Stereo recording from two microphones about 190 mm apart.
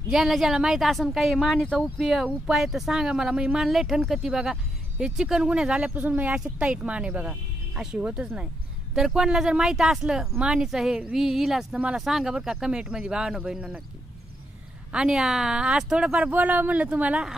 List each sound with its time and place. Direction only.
0.1 s speech: centre (ahead or behind)
14.9 s speech: 5° right (ahead or behind)